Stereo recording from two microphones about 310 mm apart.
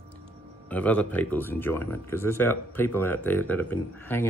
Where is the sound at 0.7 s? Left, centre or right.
Centre.